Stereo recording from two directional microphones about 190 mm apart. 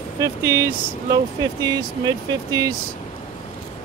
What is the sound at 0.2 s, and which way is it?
Speech, 15° right (ahead or behind).